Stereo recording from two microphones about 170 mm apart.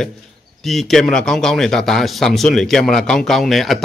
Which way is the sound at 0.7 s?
Centre (ahead or behind).